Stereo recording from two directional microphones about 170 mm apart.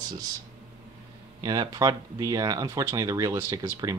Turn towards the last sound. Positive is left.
turn(degrees=-20)  # may be behind; listen again after turning